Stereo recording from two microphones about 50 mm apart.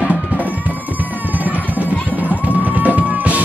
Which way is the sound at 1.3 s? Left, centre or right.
Right.